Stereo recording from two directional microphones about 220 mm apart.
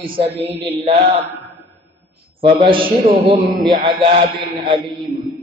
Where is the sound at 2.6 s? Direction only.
25° right (ahead or behind).